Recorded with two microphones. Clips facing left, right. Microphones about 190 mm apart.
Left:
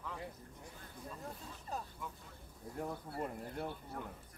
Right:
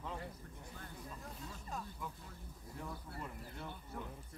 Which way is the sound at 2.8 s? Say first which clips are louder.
Left 7 dB; 50° left (ahead or behind).